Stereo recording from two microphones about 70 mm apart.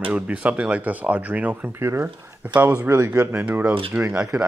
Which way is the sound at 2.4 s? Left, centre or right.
Right.